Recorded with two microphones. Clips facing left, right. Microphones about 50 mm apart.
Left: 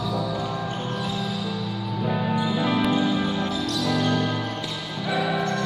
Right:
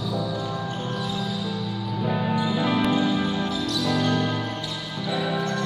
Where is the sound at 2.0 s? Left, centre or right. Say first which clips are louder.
Even; centre.